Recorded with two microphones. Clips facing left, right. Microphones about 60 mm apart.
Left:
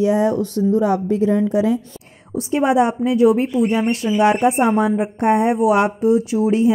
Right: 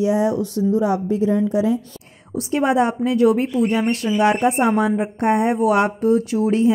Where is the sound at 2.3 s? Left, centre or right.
Left.